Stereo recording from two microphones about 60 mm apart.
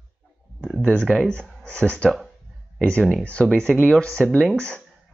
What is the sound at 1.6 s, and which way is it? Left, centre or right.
Speech, centre.